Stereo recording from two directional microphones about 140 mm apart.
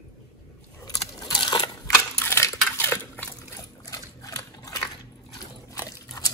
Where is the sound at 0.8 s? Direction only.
30° left (ahead or behind).